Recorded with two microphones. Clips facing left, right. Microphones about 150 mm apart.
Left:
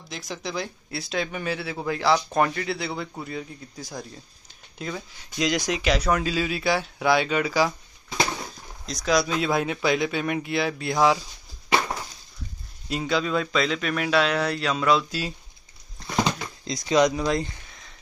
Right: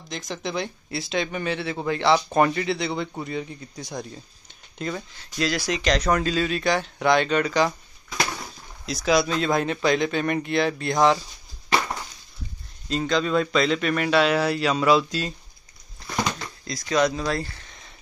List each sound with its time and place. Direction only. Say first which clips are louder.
0.3 s speech: right 2 dB; centre (ahead or behind)
8.8 s speech: right 2 dB; 5° right (ahead or behind)
12.8 s speech: right 2 dB; 10° left (ahead or behind)
16.3 s speech: left 2 dB; 20° left (ahead or behind)